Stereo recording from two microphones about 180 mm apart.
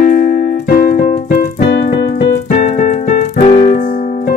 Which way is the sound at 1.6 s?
65° left (ahead or behind).